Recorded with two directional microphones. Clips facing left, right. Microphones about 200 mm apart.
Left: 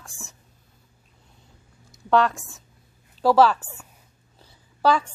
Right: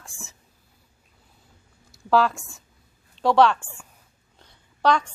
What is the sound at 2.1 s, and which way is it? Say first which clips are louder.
A woman's voice: even; centre (ahead or behind).